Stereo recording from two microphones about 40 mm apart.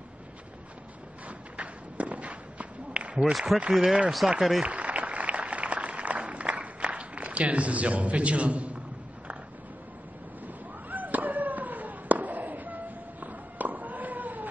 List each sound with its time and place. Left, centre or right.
1.6 s run: right
3.5 s speech: centre
4.6 s applause: right
10.4 s fireworks: right